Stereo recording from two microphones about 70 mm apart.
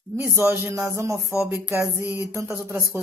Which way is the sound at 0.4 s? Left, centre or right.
Right.